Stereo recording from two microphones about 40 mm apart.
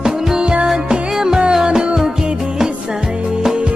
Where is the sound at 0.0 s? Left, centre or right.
Centre.